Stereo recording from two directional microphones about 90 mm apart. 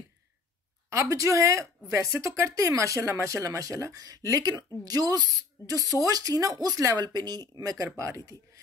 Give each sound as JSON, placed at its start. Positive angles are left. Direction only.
{"t": 0.8, "sound": "speech", "side_deg": -35}
{"t": 7.0, "sound": "speech", "side_deg": -50}